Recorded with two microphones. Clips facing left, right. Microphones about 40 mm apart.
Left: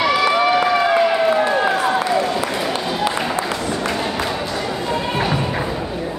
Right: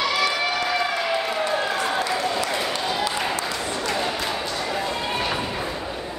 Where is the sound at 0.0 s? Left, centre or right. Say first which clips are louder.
Left 7 dB; left.